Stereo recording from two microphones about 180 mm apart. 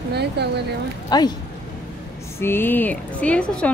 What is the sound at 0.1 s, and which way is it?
Speech, 65° right (ahead or behind).